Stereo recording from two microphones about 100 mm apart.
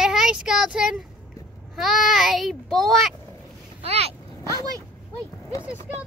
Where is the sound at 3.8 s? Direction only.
90° right.